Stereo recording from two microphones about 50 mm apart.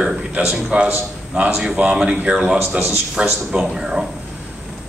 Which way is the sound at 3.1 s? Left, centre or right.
Centre.